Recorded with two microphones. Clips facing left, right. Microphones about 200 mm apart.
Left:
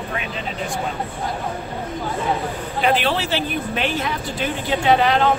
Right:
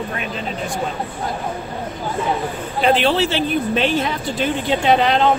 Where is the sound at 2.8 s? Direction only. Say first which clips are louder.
Right 4 dB; 30° right (ahead or behind).